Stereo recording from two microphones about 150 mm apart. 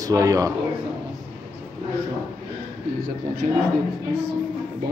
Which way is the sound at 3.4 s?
60° right (ahead or behind).